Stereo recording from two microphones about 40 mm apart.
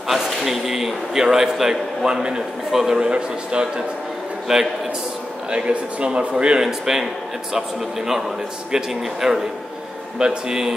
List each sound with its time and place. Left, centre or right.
0.1 s a man's voice: centre
3.1 s a man's voice: right
5.5 s a man's voice: right
6.6 s a man's voice: centre
8.7 s a man's voice: centre